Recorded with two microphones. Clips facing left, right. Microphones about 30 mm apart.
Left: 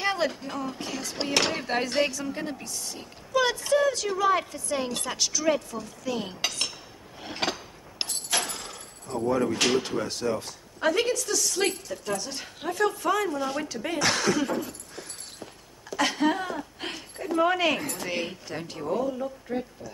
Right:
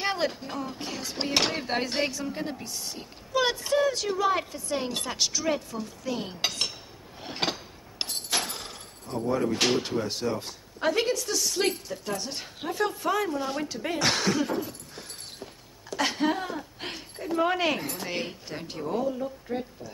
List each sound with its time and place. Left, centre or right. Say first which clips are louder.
0.0 s speech: left 1 dB; right
2.2 s a woman's voice: even; centre
7.2 s a sound: even; right
8.1 s keys jangling: left 1 dB; right
9.5 s speech: left 1 dB; right
14.7 s dog: left 1 dB; right
16.0 s speech: left 2 dB; right